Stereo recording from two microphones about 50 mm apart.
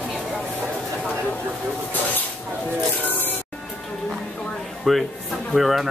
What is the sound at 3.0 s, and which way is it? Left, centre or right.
Music, left.